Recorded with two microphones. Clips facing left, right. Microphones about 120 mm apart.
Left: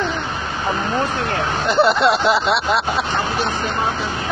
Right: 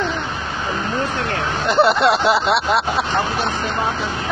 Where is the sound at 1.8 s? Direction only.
5° right (ahead or behind).